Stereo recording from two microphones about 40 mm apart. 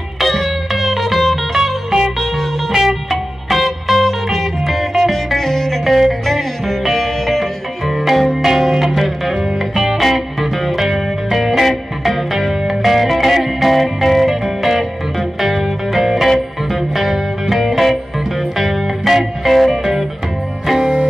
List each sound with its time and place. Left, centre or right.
0.2 s music: centre
5.1 s music: centre